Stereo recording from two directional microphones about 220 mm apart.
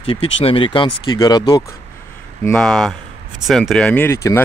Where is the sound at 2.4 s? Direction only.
5° left (ahead or behind).